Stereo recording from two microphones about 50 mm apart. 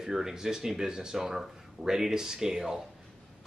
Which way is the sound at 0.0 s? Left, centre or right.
Centre.